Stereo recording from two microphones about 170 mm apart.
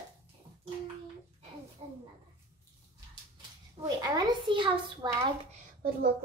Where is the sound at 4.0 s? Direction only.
25° right (ahead or behind).